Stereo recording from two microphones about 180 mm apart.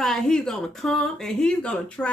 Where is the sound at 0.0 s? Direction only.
5° left (ahead or behind).